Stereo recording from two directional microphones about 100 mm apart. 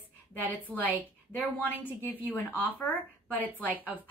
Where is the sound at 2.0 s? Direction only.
20° left (ahead or behind).